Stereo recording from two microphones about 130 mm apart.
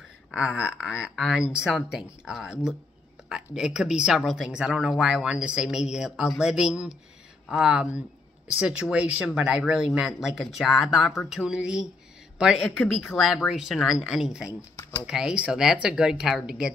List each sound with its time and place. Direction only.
0.3 s speech: 10° right (ahead or behind)
14.8 s a sound: 15° left (ahead or behind)
15.0 s speech: 5° right (ahead or behind)